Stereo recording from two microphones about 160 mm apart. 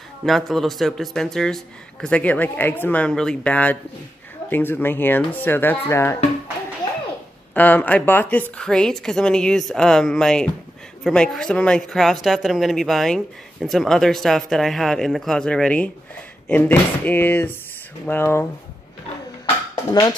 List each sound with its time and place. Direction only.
0.2 s speech: centre (ahead or behind); by 6.1 s 15° left (ahead or behind)
7.5 s speech: 10° left (ahead or behind)
19.7 s speech: 25° left (ahead or behind)